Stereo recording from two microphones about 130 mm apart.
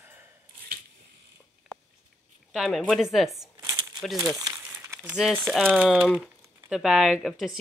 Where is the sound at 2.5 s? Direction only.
Centre (ahead or behind).